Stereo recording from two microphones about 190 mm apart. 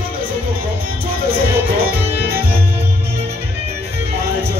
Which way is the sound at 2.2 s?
55° right (ahead or behind).